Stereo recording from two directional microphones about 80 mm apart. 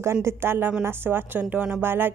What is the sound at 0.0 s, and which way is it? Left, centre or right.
A woman's voice, right.